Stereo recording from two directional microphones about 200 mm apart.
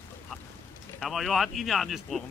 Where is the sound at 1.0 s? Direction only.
Centre (ahead or behind).